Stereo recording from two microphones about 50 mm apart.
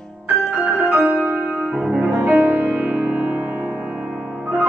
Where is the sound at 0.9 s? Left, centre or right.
Centre.